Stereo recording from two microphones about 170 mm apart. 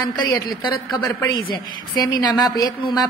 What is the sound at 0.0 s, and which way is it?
A woman's voice, 25° left (ahead or behind).